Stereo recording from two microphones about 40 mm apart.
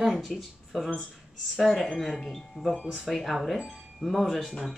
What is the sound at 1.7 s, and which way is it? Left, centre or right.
Speech, centre.